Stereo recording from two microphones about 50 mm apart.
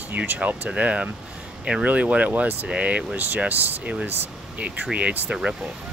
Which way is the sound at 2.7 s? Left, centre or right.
Right.